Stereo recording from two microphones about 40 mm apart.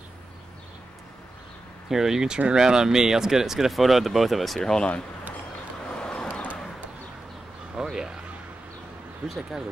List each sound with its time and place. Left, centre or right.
1.9 s speech: centre
4.6 s speech: centre
5.9 s vehicle: left
7.8 s a sound: centre